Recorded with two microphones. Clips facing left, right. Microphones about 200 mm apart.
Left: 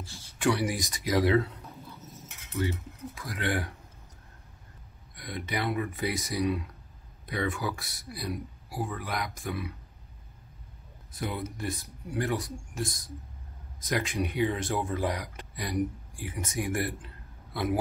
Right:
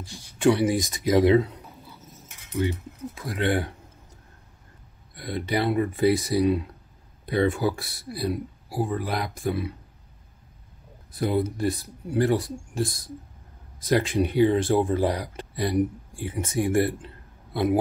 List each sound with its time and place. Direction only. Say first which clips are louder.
0.0 s a sound: right 4 dB; 15° right (ahead or behind)
0.4 s speech: right 7 dB; 25° right (ahead or behind)
3.2 s speech: right 6 dB; 25° right (ahead or behind)
5.1 s speech: right 7 dB; 30° right (ahead or behind)
11.1 s speech: right 10 dB; 35° right (ahead or behind)